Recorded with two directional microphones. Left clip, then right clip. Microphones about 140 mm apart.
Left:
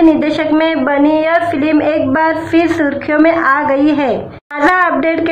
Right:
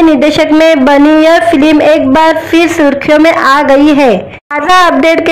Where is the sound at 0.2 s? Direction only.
40° right (ahead or behind).